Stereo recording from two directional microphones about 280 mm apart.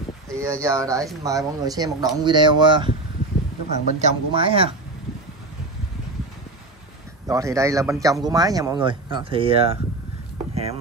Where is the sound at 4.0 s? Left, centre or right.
Right.